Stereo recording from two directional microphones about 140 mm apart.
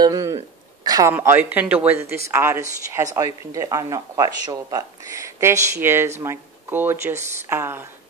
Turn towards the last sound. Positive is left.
turn(degrees=-15)  # may be behind; listen again after turning